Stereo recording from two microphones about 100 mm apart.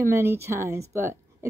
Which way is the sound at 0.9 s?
25° right (ahead or behind).